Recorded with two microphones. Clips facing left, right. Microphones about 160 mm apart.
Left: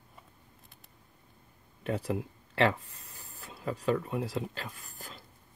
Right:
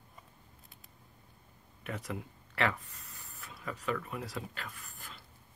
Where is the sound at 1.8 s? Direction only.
30° left (ahead or behind).